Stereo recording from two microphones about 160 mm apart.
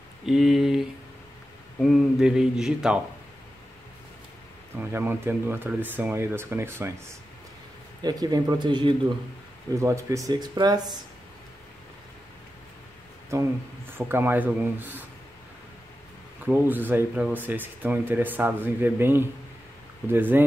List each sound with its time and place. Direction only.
0.3 s speech: centre (ahead or behind)
4.7 s speech: 15° right (ahead or behind)
8.0 s speech: 25° right (ahead or behind)
9.8 s speech: 20° right (ahead or behind)
13.3 s speech: 15° right (ahead or behind)
16.4 s speech: 10° right (ahead or behind)